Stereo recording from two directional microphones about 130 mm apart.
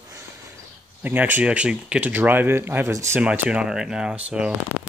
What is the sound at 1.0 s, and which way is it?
Speech, 15° right (ahead or behind).